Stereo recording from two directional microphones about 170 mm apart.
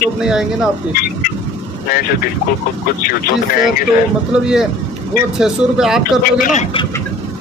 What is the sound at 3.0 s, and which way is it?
Speech, 60° left (ahead or behind).